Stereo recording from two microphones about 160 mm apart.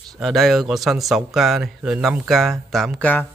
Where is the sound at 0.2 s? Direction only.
Centre (ahead or behind).